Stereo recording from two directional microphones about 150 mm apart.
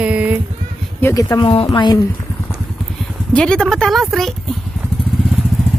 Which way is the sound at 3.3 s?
5° left (ahead or behind).